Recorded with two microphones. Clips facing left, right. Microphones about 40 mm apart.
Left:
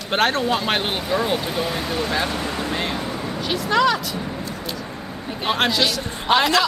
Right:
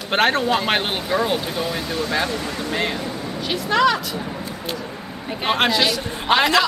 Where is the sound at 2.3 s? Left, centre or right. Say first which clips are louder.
Left 1 dB; left.